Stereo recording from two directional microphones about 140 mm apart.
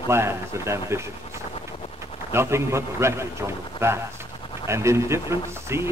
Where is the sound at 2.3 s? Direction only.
20° right (ahead or behind).